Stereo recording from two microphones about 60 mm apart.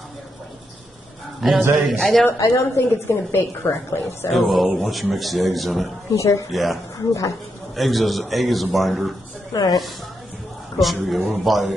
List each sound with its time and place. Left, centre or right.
1.4 s a man's voice: centre
2.4 s a woman's voice: left
4.5 s a man's voice: centre
6.1 s speech: left
6.5 s a man's voice: centre
7.0 s speech: left
7.7 s a man's voice: centre
9.5 s speech: left
10.8 s a man's voice: centre